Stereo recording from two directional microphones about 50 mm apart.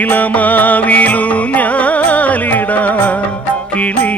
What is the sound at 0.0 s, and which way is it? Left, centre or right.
Music, left.